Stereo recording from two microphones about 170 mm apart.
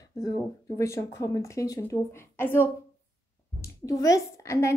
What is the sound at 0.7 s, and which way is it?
A woman's voice, 15° left (ahead or behind).